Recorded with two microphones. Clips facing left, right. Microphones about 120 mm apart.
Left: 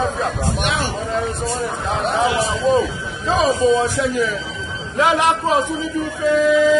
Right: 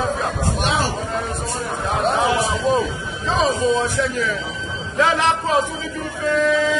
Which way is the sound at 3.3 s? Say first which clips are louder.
Left 3 dB; 15° left (ahead or behind).